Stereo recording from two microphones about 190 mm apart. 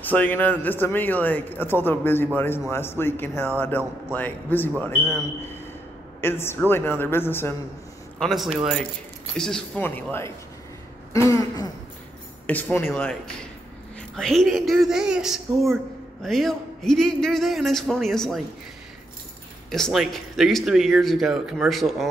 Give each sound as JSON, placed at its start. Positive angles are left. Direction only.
{"t": 0.1, "sound": "a man's voice", "side_deg": 10}
{"t": 6.2, "sound": "a man's voice", "side_deg": 10}
{"t": 8.2, "sound": "a man's voice", "side_deg": 0}
{"t": 19.7, "sound": "a man's voice", "side_deg": 0}